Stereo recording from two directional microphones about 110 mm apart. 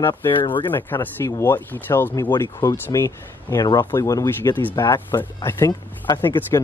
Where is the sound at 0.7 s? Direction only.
20° left (ahead or behind).